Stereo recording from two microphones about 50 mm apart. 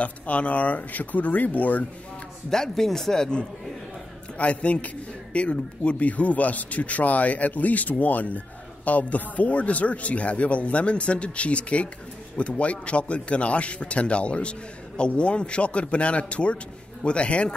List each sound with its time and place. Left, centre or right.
0.0 s speech: left
2.5 s speech: centre
4.4 s speech: left